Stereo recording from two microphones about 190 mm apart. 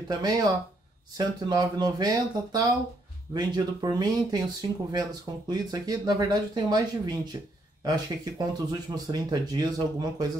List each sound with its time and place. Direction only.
0.1 s speech: 20° right (ahead or behind)